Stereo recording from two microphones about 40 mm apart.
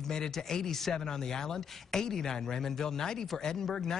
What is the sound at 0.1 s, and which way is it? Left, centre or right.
Speech, centre.